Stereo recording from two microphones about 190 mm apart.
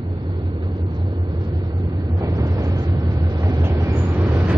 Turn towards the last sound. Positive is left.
turn(degrees=-5)  # may be behind; listen again after turning